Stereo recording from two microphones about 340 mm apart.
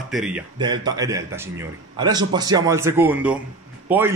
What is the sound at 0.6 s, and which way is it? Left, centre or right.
A man's voice, centre.